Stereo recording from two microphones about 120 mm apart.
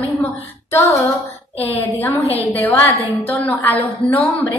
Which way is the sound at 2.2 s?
55° left (ahead or behind).